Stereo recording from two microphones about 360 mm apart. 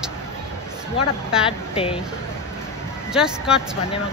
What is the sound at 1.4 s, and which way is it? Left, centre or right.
Speech, centre.